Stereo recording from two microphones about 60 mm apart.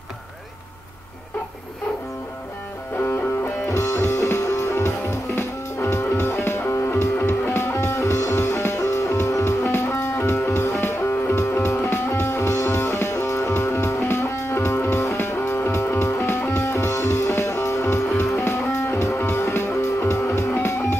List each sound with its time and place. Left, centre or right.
3.0 s music: left
10.7 s music: left